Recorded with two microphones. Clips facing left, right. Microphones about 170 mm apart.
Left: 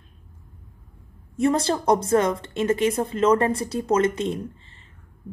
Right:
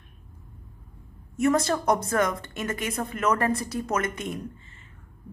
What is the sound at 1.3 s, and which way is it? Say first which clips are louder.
A woman's voice: left 2 dB; 30° left (ahead or behind).